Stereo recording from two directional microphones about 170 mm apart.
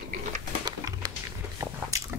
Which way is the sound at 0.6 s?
20° right (ahead or behind).